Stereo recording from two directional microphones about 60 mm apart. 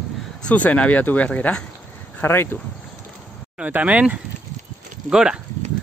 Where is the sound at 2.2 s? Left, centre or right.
Left.